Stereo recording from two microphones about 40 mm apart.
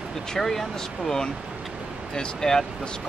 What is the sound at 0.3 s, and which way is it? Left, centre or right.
Speech, centre.